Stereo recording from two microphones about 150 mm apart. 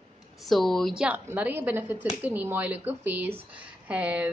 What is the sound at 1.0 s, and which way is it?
A woman's voice, 10° right (ahead or behind).